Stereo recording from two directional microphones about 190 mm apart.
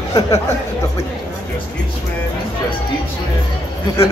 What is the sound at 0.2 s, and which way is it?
Speech, 20° left (ahead or behind).